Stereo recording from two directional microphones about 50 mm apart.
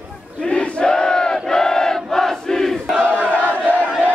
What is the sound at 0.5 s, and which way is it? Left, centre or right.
Battle cry, centre.